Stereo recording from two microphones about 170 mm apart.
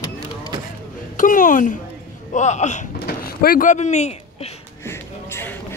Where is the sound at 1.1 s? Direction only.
50° left (ahead or behind).